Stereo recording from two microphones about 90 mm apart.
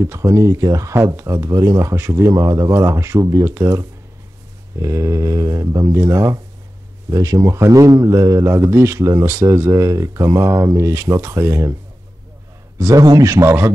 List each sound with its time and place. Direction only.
0.0 s a man's voice: 35° right (ahead or behind)
12.7 s a man's voice: 35° right (ahead or behind)